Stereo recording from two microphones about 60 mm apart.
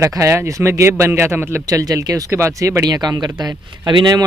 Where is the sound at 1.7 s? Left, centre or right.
Right.